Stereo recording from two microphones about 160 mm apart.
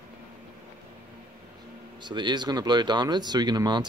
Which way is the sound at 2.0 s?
30° right (ahead or behind).